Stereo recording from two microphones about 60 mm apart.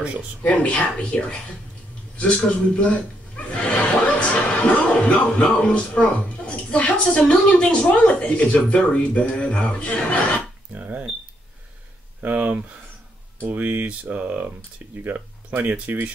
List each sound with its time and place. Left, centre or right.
0.4 s speech: left
10.7 s a sound: right
12.2 s speech: right